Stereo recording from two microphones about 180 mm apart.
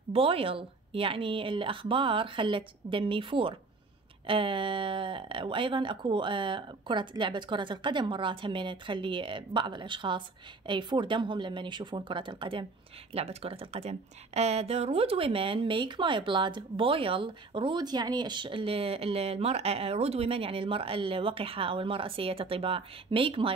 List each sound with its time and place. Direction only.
0.1 s speech: 30° right (ahead or behind)